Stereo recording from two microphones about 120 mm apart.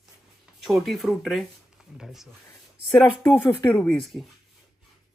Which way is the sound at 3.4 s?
20° left (ahead or behind).